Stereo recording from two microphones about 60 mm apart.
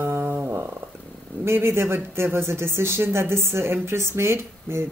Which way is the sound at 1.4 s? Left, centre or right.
Right.